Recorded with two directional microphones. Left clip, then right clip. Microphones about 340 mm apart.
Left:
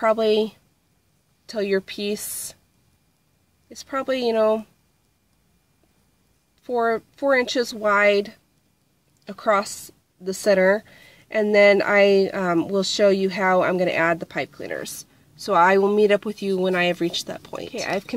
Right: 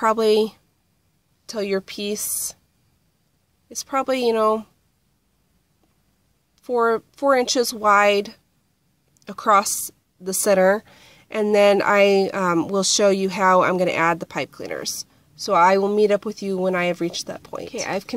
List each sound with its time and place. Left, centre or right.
0.0 s a woman's voice: centre
3.6 s a woman's voice: centre
6.6 s a woman's voice: centre